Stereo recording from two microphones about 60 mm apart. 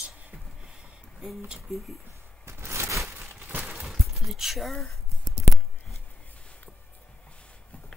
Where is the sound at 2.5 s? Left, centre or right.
Right.